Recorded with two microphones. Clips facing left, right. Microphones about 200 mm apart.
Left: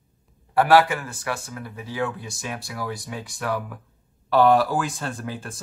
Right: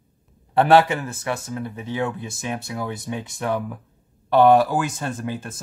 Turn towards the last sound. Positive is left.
turn(degrees=-20)  # may be behind; listen again after turning